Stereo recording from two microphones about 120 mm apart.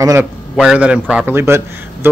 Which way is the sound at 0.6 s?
5° right (ahead or behind).